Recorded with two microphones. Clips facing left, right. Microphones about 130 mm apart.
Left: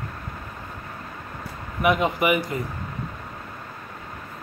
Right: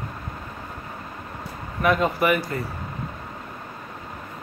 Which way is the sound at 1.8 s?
15° left (ahead or behind).